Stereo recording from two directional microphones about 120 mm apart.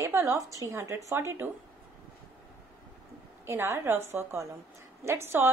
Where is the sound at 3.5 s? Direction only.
20° right (ahead or behind).